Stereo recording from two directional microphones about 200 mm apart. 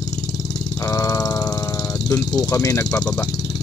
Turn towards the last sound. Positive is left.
turn(degrees=15)  # may be behind; listen again after turning